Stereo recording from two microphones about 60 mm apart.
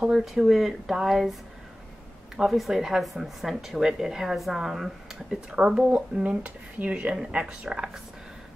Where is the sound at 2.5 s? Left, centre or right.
Centre.